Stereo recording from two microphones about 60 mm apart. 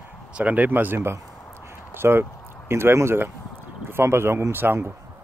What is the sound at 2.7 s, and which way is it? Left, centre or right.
Speech, right.